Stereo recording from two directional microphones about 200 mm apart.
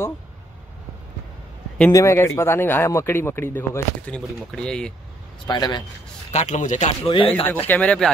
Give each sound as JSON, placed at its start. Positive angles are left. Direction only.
{"t": 1.9, "sound": "speech", "side_deg": 15}
{"t": 5.5, "sound": "speech", "side_deg": 20}
{"t": 6.3, "sound": "a man's voice", "side_deg": 35}
{"t": 7.4, "sound": "speech", "side_deg": 10}